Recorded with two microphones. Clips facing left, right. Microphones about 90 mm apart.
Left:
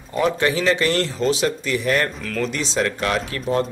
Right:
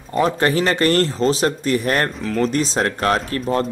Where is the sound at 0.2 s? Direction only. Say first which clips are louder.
Right 2 dB; 45° right (ahead or behind).